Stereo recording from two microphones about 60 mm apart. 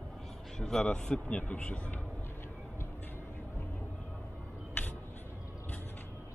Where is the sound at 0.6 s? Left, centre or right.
Centre.